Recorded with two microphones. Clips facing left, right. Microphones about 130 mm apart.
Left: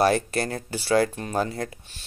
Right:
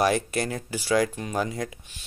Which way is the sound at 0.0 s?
35° left (ahead or behind).